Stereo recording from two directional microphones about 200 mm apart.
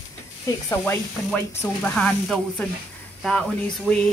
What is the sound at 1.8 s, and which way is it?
Speech, 5° left (ahead or behind).